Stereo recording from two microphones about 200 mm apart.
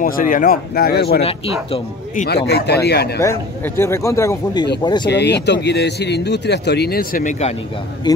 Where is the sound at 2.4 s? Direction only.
55° left (ahead or behind).